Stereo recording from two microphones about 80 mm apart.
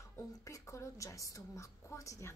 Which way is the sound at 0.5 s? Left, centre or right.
Left.